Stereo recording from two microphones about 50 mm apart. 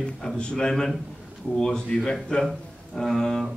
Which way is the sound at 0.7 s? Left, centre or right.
Centre.